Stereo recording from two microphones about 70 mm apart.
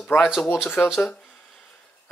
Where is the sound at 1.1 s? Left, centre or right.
Centre.